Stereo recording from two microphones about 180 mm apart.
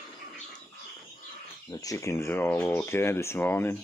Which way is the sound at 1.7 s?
20° left (ahead or behind).